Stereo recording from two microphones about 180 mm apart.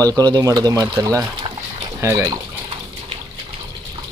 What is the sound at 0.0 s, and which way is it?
Speech, 20° right (ahead or behind).